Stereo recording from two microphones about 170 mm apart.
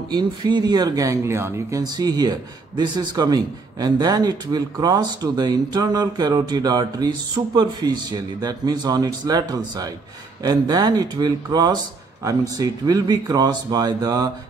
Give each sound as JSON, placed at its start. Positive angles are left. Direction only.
{"t": 0.1, "sound": "a man's voice", "side_deg": -25}